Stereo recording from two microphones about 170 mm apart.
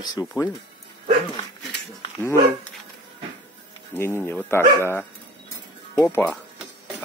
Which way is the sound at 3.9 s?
15° left (ahead or behind).